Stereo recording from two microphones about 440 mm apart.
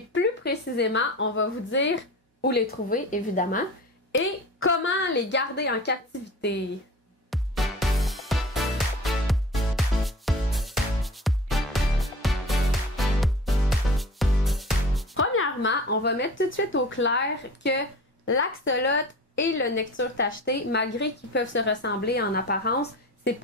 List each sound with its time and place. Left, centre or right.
0.1 s a woman's voice: left
7.2 s music: centre
15.1 s a woman's voice: left